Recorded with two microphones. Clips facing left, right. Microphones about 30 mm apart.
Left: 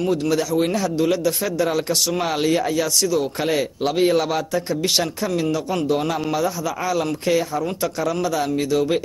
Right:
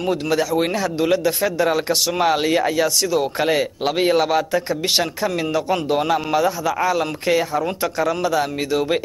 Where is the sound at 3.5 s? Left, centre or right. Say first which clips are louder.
Right 1 dB; centre.